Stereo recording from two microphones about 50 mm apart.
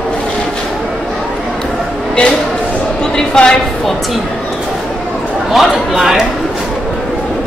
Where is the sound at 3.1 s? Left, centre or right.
Centre.